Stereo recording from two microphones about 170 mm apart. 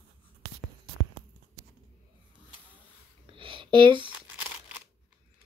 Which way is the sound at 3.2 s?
30° right (ahead or behind).